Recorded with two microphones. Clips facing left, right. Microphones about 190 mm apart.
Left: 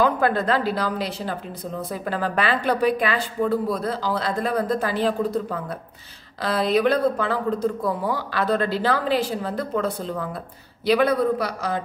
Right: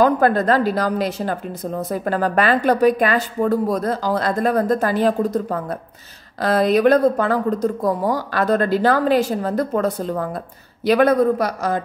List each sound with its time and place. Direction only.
0.0 s speech: 40° right (ahead or behind)